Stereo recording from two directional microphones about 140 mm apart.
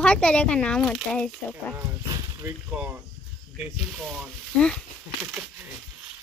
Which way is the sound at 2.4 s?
10° right (ahead or behind).